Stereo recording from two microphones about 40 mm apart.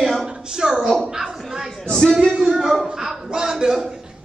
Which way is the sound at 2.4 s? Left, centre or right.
Centre.